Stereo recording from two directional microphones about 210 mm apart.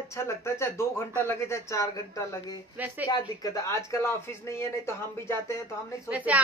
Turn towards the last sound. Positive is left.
turn(degrees=-5)  # may be behind; listen again after turning